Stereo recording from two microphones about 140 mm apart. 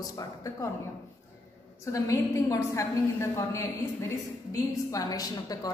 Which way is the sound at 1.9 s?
20° left (ahead or behind).